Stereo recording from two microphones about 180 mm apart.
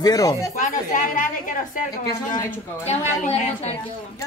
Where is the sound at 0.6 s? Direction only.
45° left (ahead or behind).